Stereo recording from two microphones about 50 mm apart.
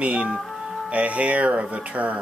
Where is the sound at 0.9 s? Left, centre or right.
Right.